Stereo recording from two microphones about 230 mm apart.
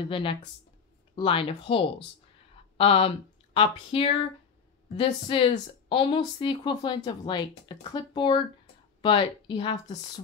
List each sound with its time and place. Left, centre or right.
0.0 s speech: left